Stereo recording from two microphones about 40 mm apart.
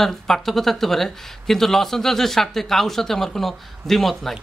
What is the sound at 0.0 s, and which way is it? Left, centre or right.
Speech, centre.